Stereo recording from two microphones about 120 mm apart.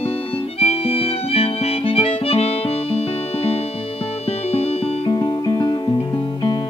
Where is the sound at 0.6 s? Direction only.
55° left (ahead or behind).